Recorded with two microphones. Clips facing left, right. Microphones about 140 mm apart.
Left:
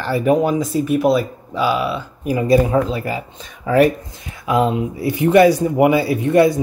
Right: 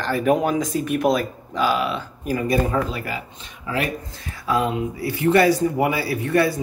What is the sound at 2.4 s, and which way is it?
Speech, 25° left (ahead or behind).